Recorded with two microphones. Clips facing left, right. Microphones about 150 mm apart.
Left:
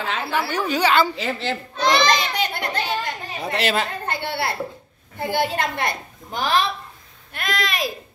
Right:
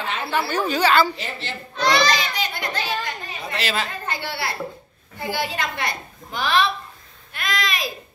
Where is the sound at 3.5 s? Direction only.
60° left (ahead or behind).